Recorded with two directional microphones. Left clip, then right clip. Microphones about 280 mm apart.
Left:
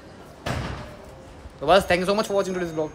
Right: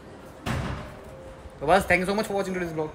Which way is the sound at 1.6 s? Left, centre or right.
Centre.